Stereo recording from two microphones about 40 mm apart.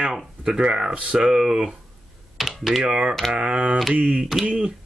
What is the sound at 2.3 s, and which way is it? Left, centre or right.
Computer keyboard, centre.